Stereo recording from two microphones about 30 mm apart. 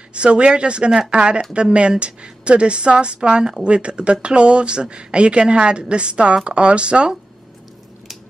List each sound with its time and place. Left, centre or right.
0.1 s speech: right